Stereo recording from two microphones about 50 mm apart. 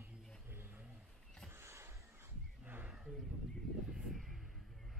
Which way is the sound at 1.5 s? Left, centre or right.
Right.